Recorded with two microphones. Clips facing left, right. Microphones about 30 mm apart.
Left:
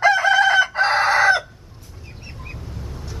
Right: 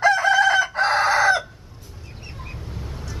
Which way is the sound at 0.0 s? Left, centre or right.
Centre.